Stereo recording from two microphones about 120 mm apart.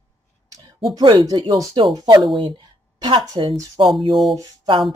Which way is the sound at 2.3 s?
40° right (ahead or behind).